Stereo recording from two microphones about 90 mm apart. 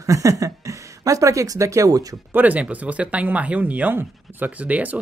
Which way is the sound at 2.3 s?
15° right (ahead or behind).